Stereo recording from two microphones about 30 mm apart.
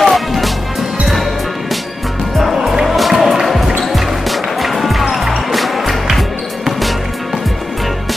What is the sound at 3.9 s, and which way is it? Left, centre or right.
Music, centre.